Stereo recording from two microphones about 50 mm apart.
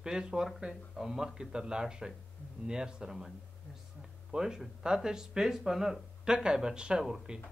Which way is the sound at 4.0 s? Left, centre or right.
Centre.